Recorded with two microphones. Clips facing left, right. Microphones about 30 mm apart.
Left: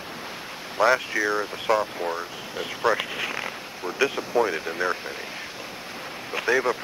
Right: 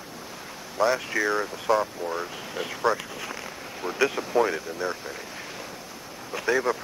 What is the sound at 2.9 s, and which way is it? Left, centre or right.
Speech, left.